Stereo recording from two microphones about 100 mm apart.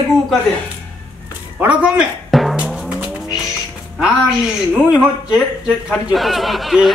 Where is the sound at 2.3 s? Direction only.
Centre (ahead or behind).